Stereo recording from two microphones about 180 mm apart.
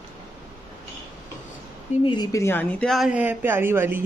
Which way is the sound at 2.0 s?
25° left (ahead or behind).